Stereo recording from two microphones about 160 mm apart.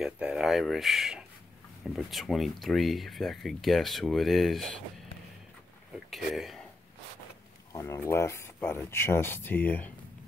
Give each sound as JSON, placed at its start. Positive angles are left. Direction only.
{"t": 0.0, "sound": "speech", "side_deg": -5}
{"t": 6.0, "sound": "a sound", "side_deg": 0}
{"t": 7.7, "sound": "speech", "side_deg": 20}